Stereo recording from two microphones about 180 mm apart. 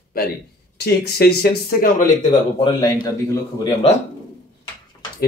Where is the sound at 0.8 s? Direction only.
60° left (ahead or behind).